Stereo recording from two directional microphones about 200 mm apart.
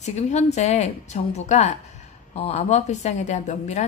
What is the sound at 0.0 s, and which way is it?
A woman's voice, 35° left (ahead or behind).